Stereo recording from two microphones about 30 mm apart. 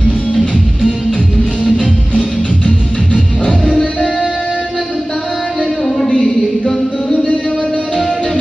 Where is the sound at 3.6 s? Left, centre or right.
Centre.